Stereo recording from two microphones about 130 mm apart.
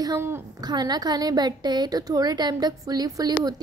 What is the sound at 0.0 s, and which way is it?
A woman's voice, 25° right (ahead or behind).